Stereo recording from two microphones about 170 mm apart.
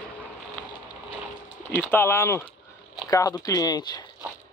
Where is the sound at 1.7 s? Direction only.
10° left (ahead or behind).